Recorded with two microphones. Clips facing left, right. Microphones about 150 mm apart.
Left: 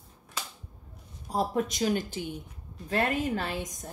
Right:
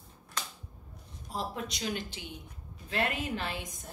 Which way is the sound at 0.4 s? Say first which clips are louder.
Even; 5° left (ahead or behind).